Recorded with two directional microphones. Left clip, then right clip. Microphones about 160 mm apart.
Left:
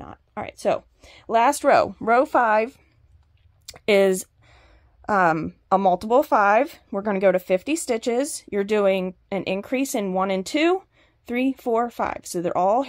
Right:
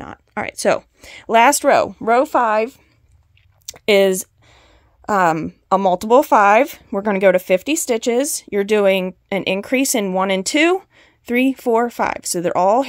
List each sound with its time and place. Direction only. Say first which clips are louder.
0.0 s speech: right 7 dB; 40° right (ahead or behind); by 2.8 s 20° right (ahead or behind)
3.6 s a sound: right 4 dB; 25° right (ahead or behind)
6.0 s speech: right 6 dB; 35° right (ahead or behind)